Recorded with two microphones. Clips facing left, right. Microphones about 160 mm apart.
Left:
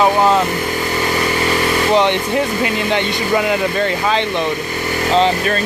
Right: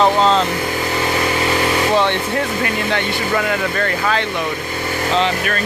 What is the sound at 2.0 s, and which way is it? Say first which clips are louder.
Speech: left 2 dB; 20° left (ahead or behind).